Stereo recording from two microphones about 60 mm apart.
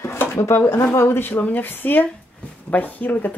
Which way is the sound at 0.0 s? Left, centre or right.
Left.